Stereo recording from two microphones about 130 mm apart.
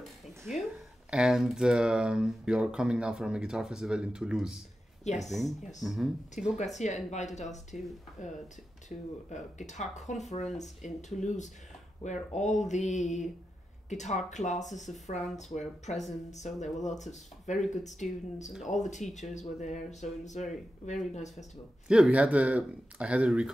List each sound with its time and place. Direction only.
1.1 s speech: 5° right (ahead or behind)
5.0 s speech: 60° left (ahead or behind)
5.8 s speech: centre (ahead or behind)
6.6 s speech: 65° left (ahead or behind)
8.8 s speech: 65° left (ahead or behind)
21.8 s speech: 5° right (ahead or behind)